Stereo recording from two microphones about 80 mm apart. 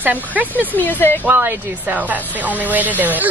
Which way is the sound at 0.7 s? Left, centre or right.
Left.